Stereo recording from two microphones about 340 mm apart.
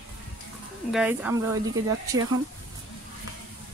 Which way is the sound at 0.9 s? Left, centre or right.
Centre.